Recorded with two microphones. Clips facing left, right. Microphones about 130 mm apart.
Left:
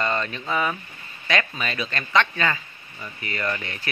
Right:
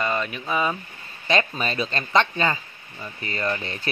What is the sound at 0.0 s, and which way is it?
Speech, 10° right (ahead or behind).